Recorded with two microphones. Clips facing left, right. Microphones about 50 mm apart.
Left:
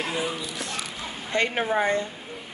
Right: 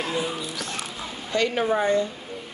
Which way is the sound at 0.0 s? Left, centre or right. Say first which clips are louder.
Right 1 dB; centre.